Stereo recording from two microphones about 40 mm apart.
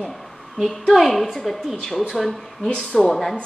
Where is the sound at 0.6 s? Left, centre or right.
Centre.